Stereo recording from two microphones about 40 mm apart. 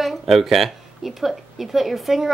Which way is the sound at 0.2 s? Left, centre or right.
Centre.